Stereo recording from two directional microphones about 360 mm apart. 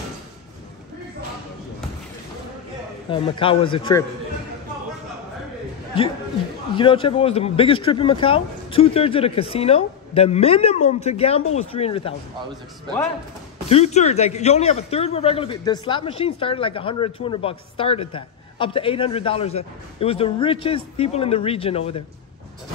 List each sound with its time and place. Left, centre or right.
3.1 s a man's voice: centre
6.7 s a man's voice: centre
13.7 s a man's voice: centre